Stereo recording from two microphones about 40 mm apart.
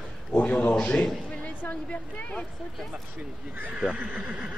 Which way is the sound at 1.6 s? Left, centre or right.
Left.